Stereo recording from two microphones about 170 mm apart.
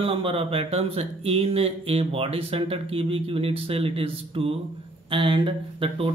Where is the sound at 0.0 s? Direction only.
30° right (ahead or behind).